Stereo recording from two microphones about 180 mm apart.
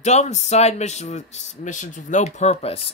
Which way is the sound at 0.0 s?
40° left (ahead or behind).